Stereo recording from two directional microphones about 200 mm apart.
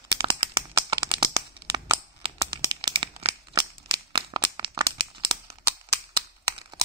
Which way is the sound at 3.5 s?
25° right (ahead or behind).